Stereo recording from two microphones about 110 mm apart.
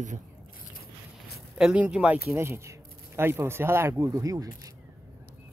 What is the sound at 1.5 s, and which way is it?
Speech, 10° right (ahead or behind).